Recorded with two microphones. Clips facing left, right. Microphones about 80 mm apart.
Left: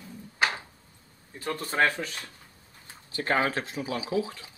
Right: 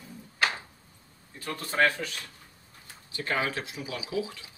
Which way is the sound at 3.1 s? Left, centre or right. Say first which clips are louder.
Left 4 dB; left.